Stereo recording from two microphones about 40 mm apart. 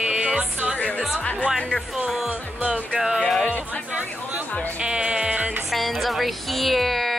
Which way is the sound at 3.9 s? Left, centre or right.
Right.